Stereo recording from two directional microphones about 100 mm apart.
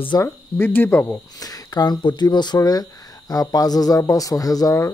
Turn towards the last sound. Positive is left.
turn(degrees=35)  # may be behind; listen again after turning